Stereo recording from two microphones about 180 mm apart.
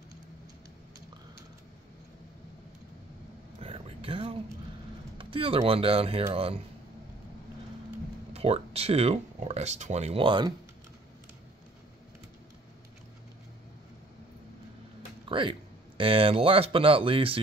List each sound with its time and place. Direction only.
3.5 s a sound: 35° right (ahead or behind)
5.1 s speech: 30° right (ahead or behind)
8.3 s speech: 35° right (ahead or behind)
15.2 s speech: 30° right (ahead or behind)